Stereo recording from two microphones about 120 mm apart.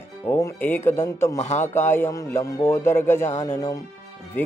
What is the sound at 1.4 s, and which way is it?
Speech, 75° left (ahead or behind).